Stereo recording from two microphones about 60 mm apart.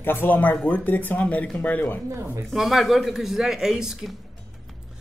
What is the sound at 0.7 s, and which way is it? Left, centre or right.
Speech, left.